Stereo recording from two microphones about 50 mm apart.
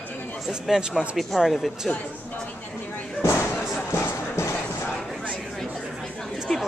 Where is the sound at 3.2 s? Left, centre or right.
Left.